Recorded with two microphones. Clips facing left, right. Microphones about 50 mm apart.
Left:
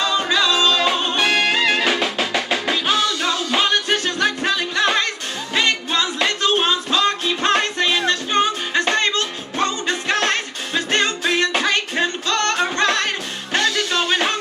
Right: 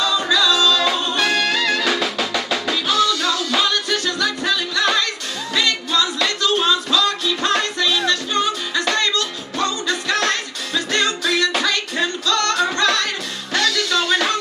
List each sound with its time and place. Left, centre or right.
0.0 s music: left